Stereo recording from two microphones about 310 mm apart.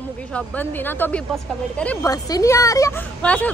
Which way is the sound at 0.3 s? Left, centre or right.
Centre.